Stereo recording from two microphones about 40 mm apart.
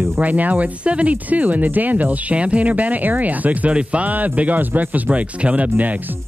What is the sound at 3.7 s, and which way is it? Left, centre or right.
Speech, right.